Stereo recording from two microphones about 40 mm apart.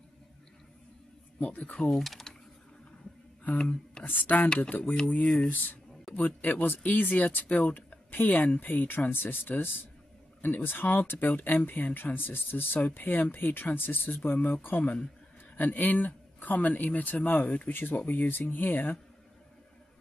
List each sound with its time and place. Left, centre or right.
1.4 s speech: left
2.0 s speech: centre
3.5 s speech: left
4.0 s speech: left
5.2 s speech: left
6.1 s speech: left